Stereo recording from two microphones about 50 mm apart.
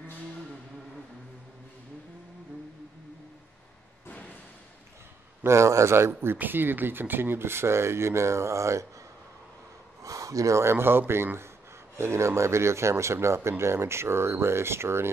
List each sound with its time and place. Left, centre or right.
5.4 s speech: right
6.3 s speech: right
10.2 s speech: right
10.7 s speech: right
12.0 s speech: right